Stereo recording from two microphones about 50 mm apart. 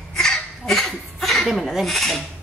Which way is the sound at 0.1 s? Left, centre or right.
Centre.